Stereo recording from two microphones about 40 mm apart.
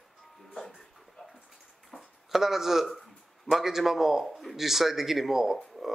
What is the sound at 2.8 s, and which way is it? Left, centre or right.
Speech, centre.